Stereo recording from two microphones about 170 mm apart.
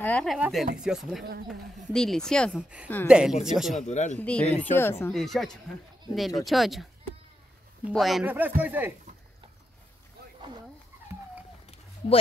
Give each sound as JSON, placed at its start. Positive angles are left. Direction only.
{"t": 0.0, "sound": "speech", "side_deg": 5}
{"t": 3.8, "sound": "speech", "side_deg": 45}
{"t": 4.2, "sound": "speech", "side_deg": 5}
{"t": 5.1, "sound": "speech", "side_deg": 0}
{"t": 7.9, "sound": "speech", "side_deg": 0}
{"t": 8.3, "sound": "speech", "side_deg": -10}
{"t": 11.1, "sound": "dog", "side_deg": -15}
{"t": 11.6, "sound": "a sound", "side_deg": 35}